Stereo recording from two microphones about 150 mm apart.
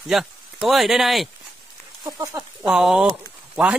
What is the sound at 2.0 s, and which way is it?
Speech, 25° right (ahead or behind).